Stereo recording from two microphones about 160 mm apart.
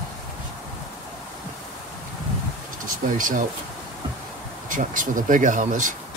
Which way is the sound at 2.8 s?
60° right (ahead or behind).